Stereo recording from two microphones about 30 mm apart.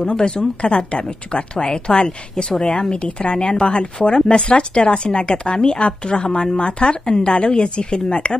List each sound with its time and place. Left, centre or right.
0.1 s a woman's voice: left